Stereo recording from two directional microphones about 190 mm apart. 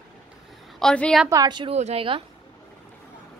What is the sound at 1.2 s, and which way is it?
A woman's voice, 20° right (ahead or behind).